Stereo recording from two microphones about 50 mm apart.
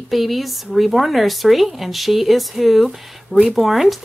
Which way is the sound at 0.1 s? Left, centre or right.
Centre.